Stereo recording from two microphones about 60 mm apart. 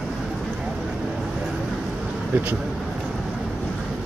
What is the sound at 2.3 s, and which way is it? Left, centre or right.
Speech, right.